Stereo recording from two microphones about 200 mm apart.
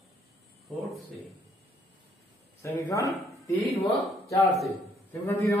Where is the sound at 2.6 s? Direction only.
15° left (ahead or behind).